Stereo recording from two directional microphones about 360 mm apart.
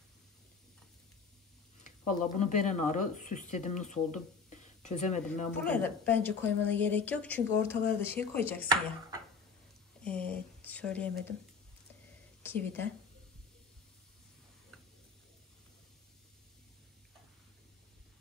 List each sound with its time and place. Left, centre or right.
1.8 s speech: centre
5.6 s a woman's voice: centre
10.0 s a sound: centre
12.4 s speech: centre